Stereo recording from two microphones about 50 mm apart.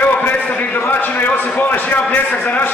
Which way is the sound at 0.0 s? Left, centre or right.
Left.